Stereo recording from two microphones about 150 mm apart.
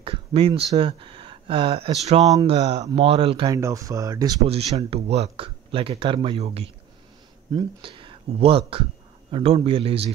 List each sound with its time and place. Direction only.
0.0 s speech: 40° right (ahead or behind)
3.4 s speech: 20° right (ahead or behind)
4.5 s speech: 45° right (ahead or behind)